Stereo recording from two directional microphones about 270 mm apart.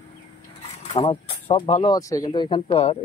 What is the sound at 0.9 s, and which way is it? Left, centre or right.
Speech, left.